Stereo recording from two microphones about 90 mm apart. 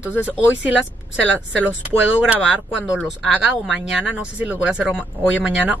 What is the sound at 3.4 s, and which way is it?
Speech, 15° right (ahead or behind).